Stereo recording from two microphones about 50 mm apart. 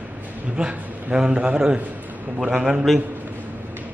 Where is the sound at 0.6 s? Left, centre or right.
Centre.